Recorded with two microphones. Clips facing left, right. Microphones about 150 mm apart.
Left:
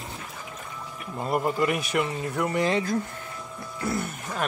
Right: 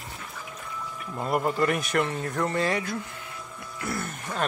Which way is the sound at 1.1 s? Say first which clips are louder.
Even; 5° left (ahead or behind).